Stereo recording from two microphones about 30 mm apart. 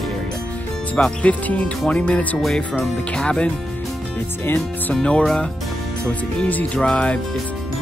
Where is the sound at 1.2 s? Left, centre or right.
Left.